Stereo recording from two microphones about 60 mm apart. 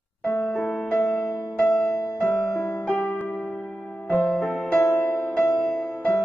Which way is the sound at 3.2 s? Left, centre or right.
Centre.